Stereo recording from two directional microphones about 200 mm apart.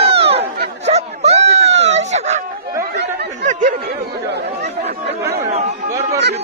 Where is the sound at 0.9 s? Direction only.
30° right (ahead or behind).